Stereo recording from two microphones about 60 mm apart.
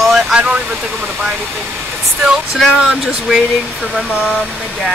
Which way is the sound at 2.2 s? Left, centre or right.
Centre.